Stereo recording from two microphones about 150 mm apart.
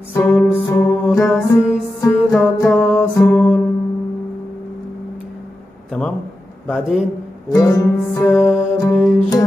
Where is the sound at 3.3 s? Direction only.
10° left (ahead or behind).